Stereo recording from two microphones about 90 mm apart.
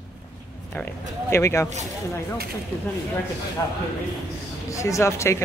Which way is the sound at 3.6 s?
35° left (ahead or behind).